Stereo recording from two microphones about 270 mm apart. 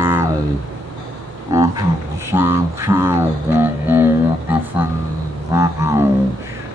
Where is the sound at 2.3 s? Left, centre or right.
Centre.